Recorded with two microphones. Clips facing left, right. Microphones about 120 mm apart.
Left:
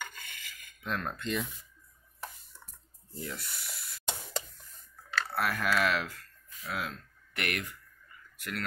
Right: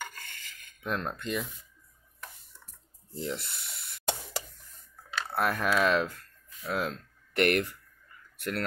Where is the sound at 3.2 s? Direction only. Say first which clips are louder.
Right 5 dB; 25° right (ahead or behind).